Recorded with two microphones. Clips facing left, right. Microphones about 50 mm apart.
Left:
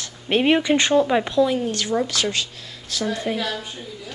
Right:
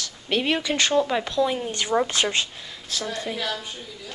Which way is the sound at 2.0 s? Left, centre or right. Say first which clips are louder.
Even; right.